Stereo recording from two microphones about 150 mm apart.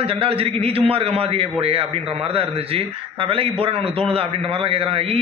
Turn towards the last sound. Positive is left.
turn(degrees=-40)  # may be behind; listen again after turning